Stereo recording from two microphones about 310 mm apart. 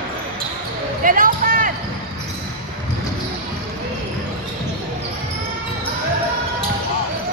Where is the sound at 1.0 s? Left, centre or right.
Right.